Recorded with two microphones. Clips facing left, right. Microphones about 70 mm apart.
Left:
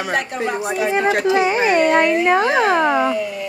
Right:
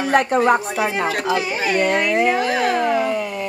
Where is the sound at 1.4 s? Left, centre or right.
Left.